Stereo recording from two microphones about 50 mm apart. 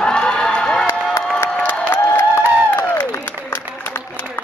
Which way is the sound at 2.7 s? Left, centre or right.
Left.